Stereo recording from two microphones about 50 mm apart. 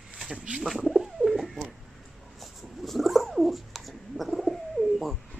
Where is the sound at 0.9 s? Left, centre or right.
Centre.